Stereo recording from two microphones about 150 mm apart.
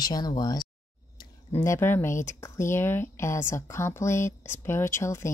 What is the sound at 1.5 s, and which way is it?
Speech, 15° left (ahead or behind).